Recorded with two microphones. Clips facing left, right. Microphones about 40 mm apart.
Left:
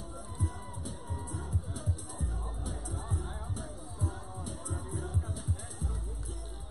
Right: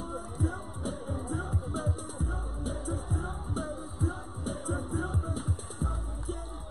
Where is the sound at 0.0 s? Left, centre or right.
Right.